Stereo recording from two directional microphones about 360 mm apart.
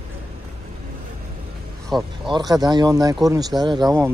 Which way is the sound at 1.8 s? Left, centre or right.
Centre.